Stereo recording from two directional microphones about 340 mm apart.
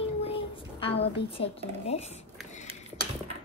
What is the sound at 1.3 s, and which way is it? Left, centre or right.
Speech, centre.